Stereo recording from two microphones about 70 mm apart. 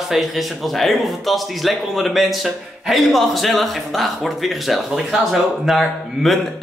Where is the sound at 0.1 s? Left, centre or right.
Centre.